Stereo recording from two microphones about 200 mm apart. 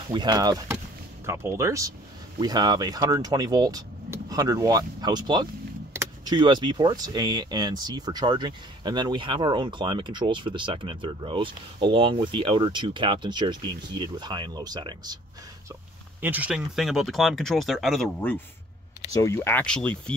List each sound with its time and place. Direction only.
0.1 s speech: 20° right (ahead or behind)
16.2 s speech: 10° right (ahead or behind)